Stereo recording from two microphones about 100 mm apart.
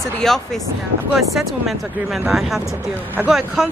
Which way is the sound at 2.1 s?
Centre (ahead or behind).